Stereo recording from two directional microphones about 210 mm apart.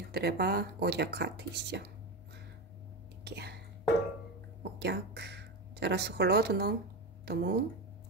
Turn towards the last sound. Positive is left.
turn(degrees=-50)  # may be behind; listen again after turning